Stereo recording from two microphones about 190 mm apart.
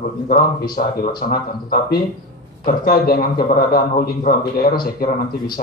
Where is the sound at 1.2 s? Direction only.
45° left (ahead or behind).